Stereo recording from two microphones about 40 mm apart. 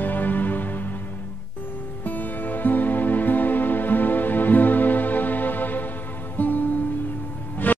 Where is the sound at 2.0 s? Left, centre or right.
Left.